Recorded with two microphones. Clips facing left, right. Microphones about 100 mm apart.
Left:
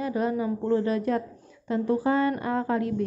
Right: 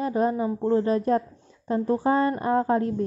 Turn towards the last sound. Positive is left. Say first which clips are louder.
# right 3 dB
turn(degrees=-35)  # may be behind; listen again after turning